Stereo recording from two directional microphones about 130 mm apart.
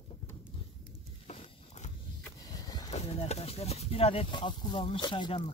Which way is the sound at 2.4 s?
30° left (ahead or behind).